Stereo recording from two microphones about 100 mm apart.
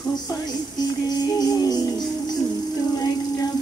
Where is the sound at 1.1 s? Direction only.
40° left (ahead or behind).